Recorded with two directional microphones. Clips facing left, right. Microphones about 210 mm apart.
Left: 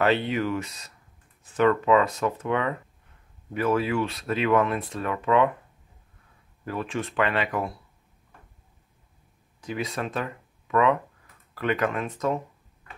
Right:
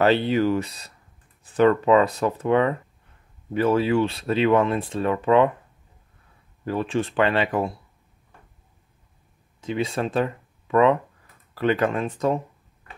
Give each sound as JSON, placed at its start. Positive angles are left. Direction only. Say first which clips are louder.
{"t": 0.0, "sound": "speech", "louder": "right 4 dB", "side_deg": -30}
{"t": 6.6, "sound": "speech", "louder": "right 6 dB", "side_deg": -30}
{"t": 9.6, "sound": "speech", "louder": "right 5 dB", "side_deg": -25}